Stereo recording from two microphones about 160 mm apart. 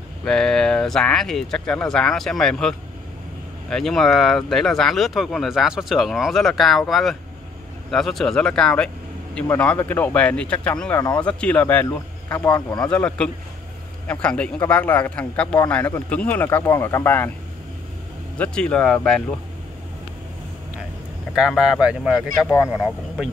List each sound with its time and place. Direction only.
0.2 s speech: 5° left (ahead or behind)
3.7 s speech: centre (ahead or behind)
12.5 s speech: 25° left (ahead or behind)
12.9 s speech: 5° left (ahead or behind)
18.4 s speech: 5° left (ahead or behind)
21.4 s speech: 5° right (ahead or behind)